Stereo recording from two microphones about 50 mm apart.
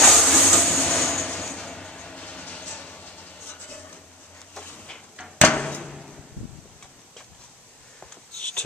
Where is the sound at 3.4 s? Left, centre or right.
Left.